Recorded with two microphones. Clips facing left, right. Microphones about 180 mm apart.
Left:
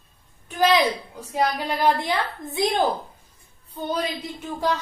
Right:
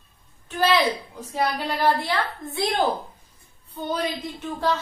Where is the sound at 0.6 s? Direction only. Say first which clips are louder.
Left 1 dB; 15° left (ahead or behind).